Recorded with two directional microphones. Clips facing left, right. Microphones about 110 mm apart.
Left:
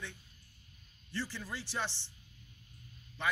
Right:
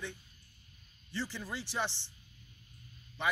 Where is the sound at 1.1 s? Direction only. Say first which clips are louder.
Right 1 dB; 15° right (ahead or behind).